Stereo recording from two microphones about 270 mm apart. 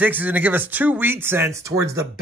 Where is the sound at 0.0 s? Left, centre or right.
Centre.